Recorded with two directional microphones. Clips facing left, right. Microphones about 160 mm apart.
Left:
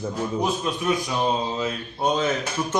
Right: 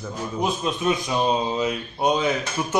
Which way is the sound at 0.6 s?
20° right (ahead or behind).